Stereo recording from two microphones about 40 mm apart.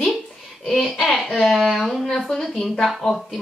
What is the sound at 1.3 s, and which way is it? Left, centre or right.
Speech, centre.